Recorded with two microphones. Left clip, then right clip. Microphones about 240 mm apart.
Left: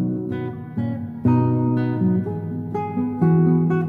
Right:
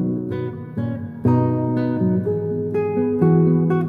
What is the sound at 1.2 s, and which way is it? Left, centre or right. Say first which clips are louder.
Music: right 1 dB; right.